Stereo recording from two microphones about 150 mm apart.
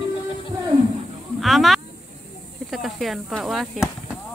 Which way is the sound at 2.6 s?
Centre (ahead or behind).